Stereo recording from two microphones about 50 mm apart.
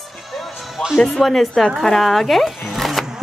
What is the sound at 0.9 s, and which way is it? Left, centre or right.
Speech, centre.